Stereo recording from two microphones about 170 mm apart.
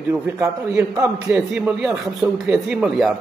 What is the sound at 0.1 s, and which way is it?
A man's voice, 15° right (ahead or behind).